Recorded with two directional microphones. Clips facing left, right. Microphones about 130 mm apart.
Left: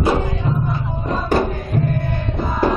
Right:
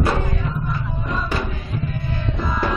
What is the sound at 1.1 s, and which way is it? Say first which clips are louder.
Music: left 8 dB; 40° left (ahead or behind).